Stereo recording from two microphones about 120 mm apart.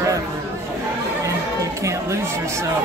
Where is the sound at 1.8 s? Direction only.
25° right (ahead or behind).